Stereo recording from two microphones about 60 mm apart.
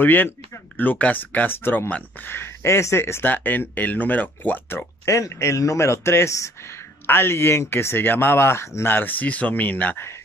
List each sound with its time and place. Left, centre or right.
0.0 s speech: left
3.3 s speech: left
5.0 s speech: left
7.1 s speech: left